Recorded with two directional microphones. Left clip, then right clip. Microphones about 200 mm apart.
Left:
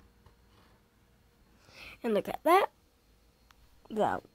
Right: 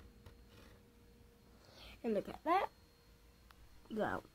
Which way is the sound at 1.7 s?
50° left (ahead or behind).